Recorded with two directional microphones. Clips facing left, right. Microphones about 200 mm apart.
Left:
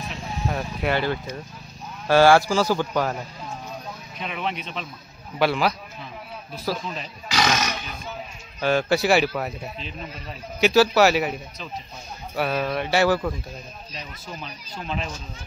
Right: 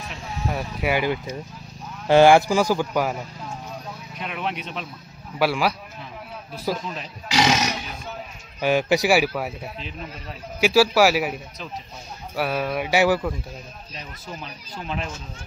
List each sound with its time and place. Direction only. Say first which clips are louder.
0.1 s speech: even; 10° right (ahead or behind)
14.4 s speech: even; 5° right (ahead or behind)